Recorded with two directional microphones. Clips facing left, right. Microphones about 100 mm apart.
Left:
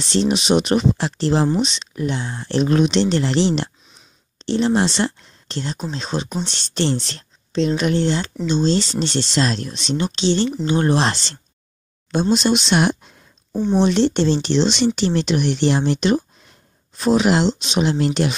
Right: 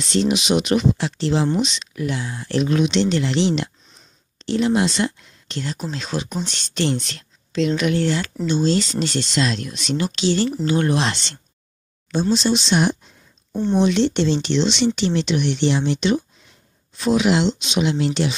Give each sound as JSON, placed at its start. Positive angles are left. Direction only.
{"t": 0.0, "sound": "speech", "side_deg": 30}
{"t": 12.1, "sound": "speech", "side_deg": 55}
{"t": 13.5, "sound": "speech", "side_deg": 5}
{"t": 13.8, "sound": "speech", "side_deg": 40}